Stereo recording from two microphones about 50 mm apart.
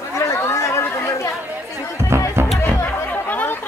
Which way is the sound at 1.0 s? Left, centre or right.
Left.